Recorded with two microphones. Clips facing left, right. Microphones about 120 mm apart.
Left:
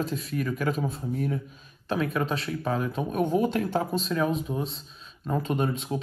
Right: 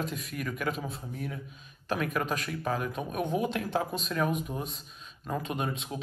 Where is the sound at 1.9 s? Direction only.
30° left (ahead or behind).